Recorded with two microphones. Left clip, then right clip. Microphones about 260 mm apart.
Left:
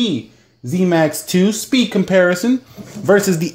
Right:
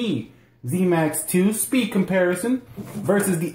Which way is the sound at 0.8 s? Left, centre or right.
Left.